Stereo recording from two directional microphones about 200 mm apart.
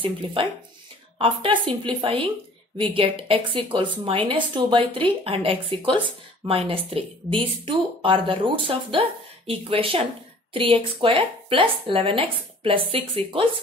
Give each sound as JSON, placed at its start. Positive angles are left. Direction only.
{"t": 0.0, "sound": "a woman's voice", "side_deg": -25}